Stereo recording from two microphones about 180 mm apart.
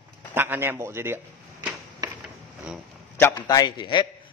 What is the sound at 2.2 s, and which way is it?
Pulleys, centre (ahead or behind).